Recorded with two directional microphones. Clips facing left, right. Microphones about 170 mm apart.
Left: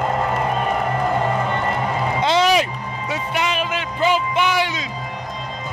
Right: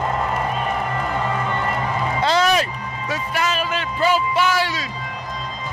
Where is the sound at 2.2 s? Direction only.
15° left (ahead or behind).